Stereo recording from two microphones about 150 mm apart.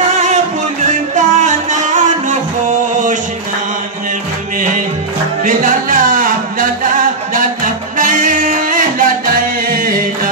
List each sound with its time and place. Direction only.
1.1 s music: 55° right (ahead or behind)
4.6 s music: 60° right (ahead or behind)